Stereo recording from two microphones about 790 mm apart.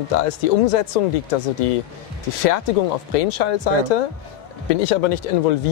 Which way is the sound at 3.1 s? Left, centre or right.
Left.